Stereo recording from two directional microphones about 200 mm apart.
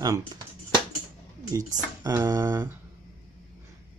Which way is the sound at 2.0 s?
15° right (ahead or behind).